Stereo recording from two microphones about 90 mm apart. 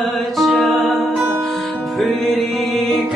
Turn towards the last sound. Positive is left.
turn(degrees=0)  # may be behind; listen again after turning